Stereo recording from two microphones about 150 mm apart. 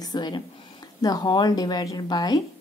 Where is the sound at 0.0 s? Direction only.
30° left (ahead or behind).